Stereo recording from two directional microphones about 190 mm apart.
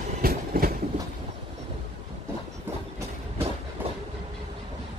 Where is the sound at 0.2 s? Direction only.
50° right (ahead or behind).